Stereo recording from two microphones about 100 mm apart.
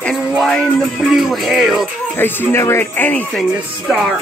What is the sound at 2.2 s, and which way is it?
Speech, 20° left (ahead or behind).